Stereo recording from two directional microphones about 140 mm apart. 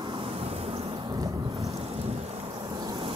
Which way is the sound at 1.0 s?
25° right (ahead or behind).